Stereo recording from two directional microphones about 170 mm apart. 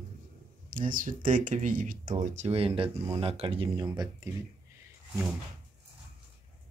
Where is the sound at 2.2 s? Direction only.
45° right (ahead or behind).